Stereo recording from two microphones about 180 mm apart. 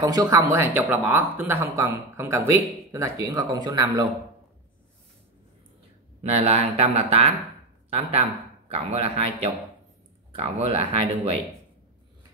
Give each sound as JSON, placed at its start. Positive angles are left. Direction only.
{"t": 0.0, "sound": "speech", "side_deg": -20}
{"t": 6.2, "sound": "speech", "side_deg": -35}
{"t": 8.6, "sound": "speech", "side_deg": -35}